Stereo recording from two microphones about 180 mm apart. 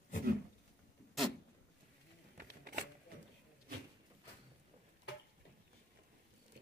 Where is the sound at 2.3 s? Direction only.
60° right (ahead or behind).